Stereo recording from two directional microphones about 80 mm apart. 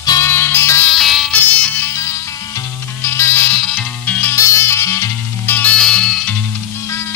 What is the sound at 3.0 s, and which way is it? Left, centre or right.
Music, left.